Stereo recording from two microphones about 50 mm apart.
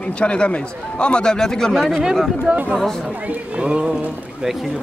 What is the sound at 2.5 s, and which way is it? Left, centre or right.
Speech, right.